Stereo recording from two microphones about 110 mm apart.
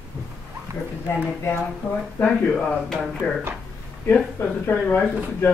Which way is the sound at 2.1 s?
10° left (ahead or behind).